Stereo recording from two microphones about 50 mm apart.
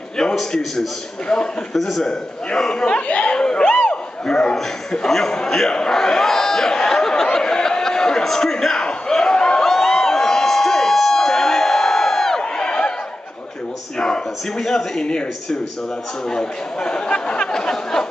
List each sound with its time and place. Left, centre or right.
0.2 s a man's voice: centre
1.7 s a man's voice: centre
2.0 s a man's voice: centre
3.8 s a sound: centre
4.9 s a man's voice: centre
7.3 s a sound: centre
13.9 s a sound: centre
14.6 s a man's voice: centre
16.3 s speech: centre